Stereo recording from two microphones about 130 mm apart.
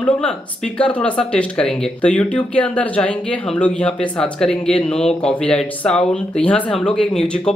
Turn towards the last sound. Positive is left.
turn(degrees=5)  # may be behind; listen again after turning